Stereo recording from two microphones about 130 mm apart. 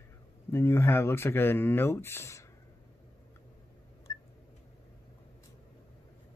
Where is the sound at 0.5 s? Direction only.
20° left (ahead or behind).